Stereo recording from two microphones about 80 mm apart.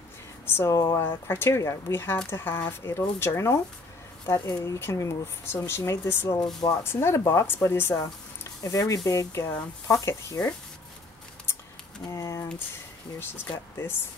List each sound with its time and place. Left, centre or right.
0.7 s speech: left
1.0 s speech: left
8.6 s speech: left
12.1 s a sound: left